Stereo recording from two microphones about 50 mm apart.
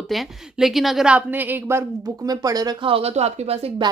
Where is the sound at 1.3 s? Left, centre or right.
Right.